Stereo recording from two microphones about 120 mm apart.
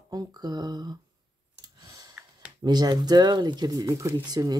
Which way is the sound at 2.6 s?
35° right (ahead or behind).